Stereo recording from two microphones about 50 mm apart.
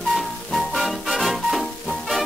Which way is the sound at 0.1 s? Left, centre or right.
Centre.